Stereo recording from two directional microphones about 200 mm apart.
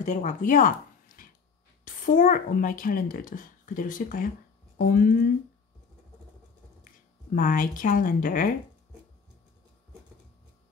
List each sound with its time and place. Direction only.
0.0 s a child's voice: 35° left (ahead or behind)
7.3 s a child's voice: 40° left (ahead or behind)